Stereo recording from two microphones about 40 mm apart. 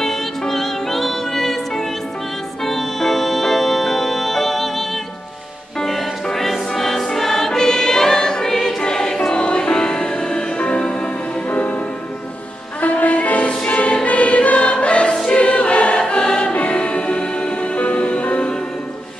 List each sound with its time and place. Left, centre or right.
0.5 s music: centre
6.3 s music: centre
7.2 s choir: centre
8.7 s music: centre
11.4 s music: left
12.8 s music: left
14.0 s choir: left
16.5 s music: left